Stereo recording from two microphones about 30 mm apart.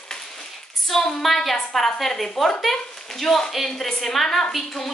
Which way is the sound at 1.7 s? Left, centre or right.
Centre.